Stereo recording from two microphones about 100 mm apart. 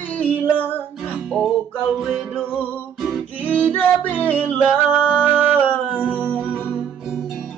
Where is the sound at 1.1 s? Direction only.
Centre (ahead or behind).